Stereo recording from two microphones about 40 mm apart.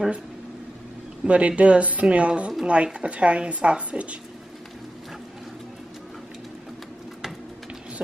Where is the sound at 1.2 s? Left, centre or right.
Right.